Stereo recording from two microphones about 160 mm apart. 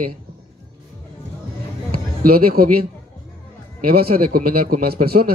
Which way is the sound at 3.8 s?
70° right (ahead or behind).